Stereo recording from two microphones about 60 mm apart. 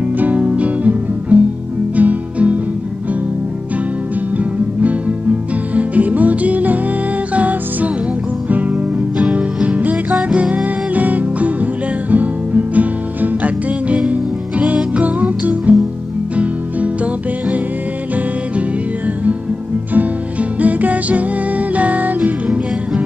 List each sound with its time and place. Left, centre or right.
0.2 s music: right
4.4 s music: right
19.9 s music: right